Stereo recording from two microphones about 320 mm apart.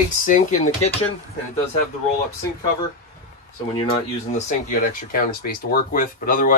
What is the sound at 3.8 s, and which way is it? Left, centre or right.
Speech, centre.